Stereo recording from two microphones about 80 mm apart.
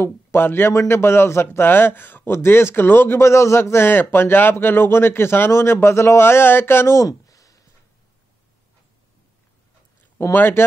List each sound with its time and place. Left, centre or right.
0.0 s a man's voice: left
10.1 s speech: left